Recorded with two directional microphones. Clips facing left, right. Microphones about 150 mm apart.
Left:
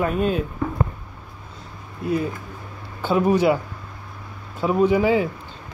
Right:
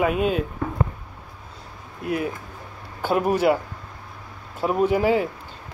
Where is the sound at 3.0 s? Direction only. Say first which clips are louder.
Left 2 dB; 5° right (ahead or behind).